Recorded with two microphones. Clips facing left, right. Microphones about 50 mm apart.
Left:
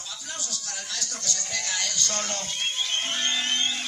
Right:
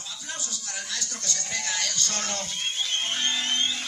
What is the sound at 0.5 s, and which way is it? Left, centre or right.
Speech, right.